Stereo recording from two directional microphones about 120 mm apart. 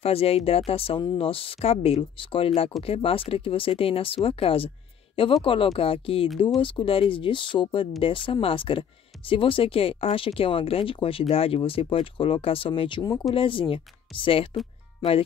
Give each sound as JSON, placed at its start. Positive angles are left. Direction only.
{"t": 0.0, "sound": "speech", "side_deg": 55}